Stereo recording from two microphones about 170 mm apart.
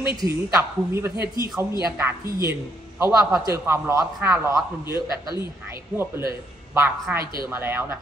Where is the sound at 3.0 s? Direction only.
15° right (ahead or behind).